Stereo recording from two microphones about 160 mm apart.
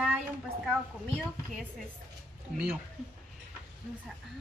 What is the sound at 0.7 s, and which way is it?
A woman's voice, centre (ahead or behind).